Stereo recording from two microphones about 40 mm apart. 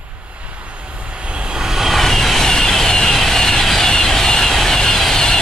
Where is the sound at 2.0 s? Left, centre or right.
Centre.